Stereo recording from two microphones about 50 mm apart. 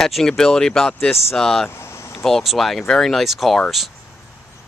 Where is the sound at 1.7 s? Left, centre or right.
Left.